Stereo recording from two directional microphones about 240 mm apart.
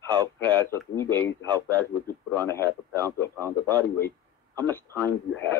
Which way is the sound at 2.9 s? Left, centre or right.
Centre.